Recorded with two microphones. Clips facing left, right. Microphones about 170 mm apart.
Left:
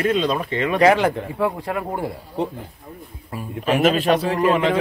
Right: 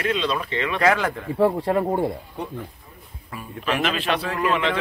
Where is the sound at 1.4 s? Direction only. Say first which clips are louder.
Right 6 dB; 30° right (ahead or behind).